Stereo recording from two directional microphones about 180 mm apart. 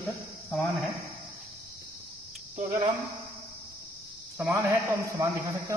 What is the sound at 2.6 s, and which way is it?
Speech, 35° right (ahead or behind).